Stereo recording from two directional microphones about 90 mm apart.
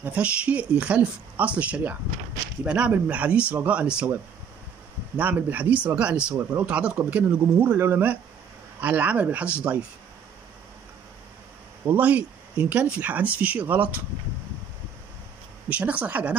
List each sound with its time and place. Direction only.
0.0 s speech: 15° right (ahead or behind)
5.1 s speech: 20° right (ahead or behind)
11.9 s speech: 20° right (ahead or behind)
15.7 s speech: 15° right (ahead or behind)